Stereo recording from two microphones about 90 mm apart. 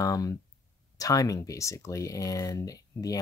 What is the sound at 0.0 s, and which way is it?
Speech, 40° left (ahead or behind).